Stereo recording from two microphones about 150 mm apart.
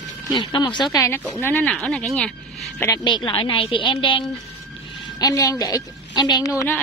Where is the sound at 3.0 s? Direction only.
30° left (ahead or behind).